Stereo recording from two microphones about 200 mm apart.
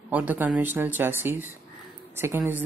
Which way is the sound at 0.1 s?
10° right (ahead or behind).